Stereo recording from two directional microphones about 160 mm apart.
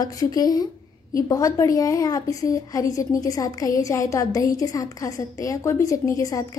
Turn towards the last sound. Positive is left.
turn(degrees=20)  # may be behind; listen again after turning